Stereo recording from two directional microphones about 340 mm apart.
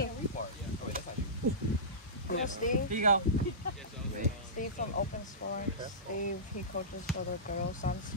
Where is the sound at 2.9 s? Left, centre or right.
Right.